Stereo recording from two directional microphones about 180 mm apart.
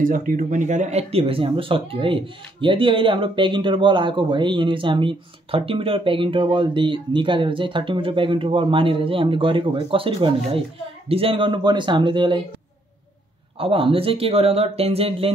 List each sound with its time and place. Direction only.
0.0 s speech: 50° right (ahead or behind); by 12.4 s 25° right (ahead or behind)
13.6 s speech: 30° right (ahead or behind)